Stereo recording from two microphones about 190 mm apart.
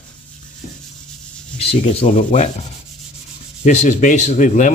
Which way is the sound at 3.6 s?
40° left (ahead or behind).